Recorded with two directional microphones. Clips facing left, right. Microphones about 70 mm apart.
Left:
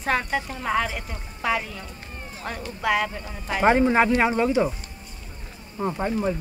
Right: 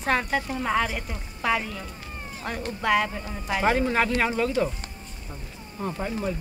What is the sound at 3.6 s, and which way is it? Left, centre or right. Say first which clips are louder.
Speech: left 5 dB; left.